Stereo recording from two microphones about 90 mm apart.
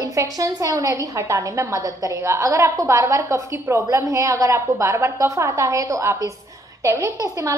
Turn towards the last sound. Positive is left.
turn(degrees=-40)  # may be behind; listen again after turning